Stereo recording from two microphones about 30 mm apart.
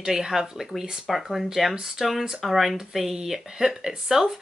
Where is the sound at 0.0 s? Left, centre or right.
Centre.